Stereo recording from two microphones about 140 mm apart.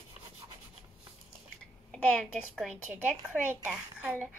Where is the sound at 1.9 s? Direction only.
5° left (ahead or behind).